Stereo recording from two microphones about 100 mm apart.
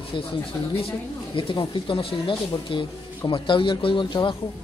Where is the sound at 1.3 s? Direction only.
55° left (ahead or behind).